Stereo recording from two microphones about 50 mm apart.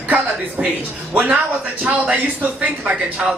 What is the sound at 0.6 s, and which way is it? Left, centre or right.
Speech, right.